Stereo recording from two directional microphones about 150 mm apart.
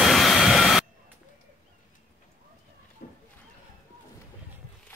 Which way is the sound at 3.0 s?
55° left (ahead or behind).